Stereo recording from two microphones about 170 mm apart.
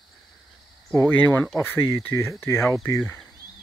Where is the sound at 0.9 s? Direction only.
10° left (ahead or behind).